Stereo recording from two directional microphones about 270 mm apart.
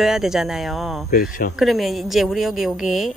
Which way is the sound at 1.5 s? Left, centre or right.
Centre.